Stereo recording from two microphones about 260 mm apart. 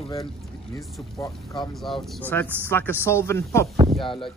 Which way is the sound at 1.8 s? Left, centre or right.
Centre.